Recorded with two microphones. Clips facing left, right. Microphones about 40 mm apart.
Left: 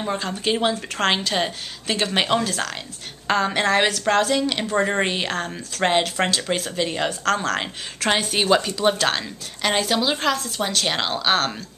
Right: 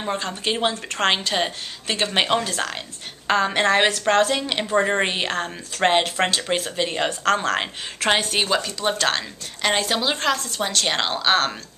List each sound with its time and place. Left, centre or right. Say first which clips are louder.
0.0 s a woman's voice: left 1 dB; centre